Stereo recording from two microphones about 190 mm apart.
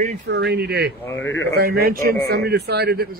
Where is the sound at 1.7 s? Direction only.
55° right (ahead or behind).